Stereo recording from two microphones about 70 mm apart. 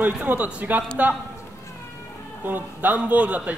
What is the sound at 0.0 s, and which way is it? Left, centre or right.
Speech, right.